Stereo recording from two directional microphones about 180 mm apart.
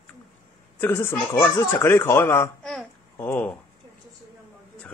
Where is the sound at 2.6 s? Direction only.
Centre (ahead or behind).